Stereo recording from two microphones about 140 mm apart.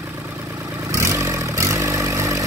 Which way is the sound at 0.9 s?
20° right (ahead or behind).